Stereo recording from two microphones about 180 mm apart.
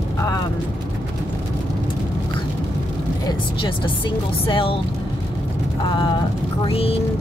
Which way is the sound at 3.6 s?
30° left (ahead or behind).